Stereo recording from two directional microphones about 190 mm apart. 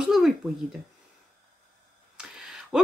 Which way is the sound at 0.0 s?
Centre (ahead or behind).